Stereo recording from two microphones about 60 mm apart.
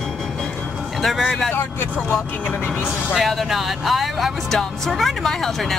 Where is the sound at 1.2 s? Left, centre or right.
Centre.